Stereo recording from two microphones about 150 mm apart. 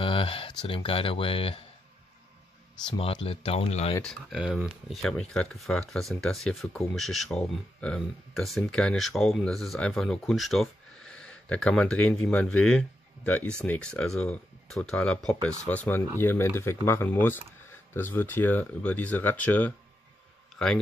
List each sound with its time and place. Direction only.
0.0 s speech: 35° left (ahead or behind)
2.9 s speech: 40° left (ahead or behind)
4.0 s speech: centre (ahead or behind)